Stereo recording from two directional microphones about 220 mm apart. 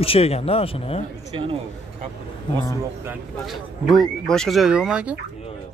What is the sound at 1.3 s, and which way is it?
Speech, 25° right (ahead or behind).